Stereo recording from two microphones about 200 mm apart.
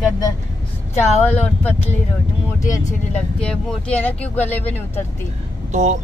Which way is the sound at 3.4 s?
5° left (ahead or behind).